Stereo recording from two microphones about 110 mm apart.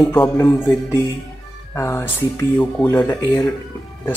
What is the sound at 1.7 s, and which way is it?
Speech, 25° left (ahead or behind).